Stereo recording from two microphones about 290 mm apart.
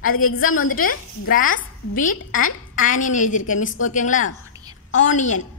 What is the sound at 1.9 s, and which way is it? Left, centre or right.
A woman's voice, left.